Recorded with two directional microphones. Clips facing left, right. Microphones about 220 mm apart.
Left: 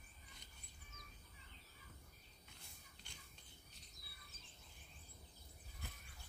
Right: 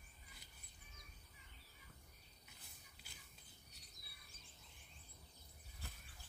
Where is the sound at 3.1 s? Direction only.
5° right (ahead or behind).